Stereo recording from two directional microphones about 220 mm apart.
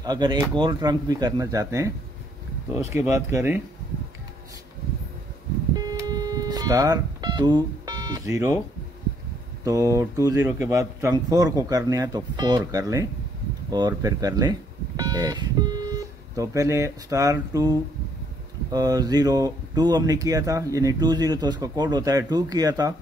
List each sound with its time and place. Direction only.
0.0 s speech: 20° right (ahead or behind)
5.8 s music: 15° right (ahead or behind)
9.7 s speech: 15° right (ahead or behind)